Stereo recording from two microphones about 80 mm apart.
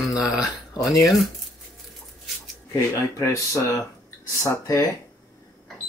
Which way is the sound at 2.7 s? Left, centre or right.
Left.